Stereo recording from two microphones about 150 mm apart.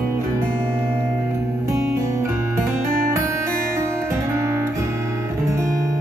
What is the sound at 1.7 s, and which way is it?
Music, 20° right (ahead or behind).